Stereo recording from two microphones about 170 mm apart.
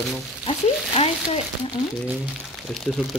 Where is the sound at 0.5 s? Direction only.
35° left (ahead or behind).